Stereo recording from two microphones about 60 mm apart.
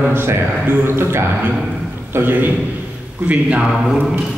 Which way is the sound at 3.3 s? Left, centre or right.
Right.